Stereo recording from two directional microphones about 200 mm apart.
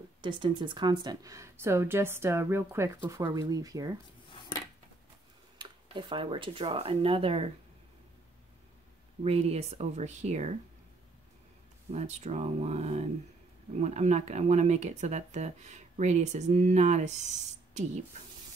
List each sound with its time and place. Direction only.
0.2 s speech: 25° right (ahead or behind)
5.6 s speech: 25° right (ahead or behind)
9.2 s speech: 30° right (ahead or behind)
11.9 s speech: 35° right (ahead or behind)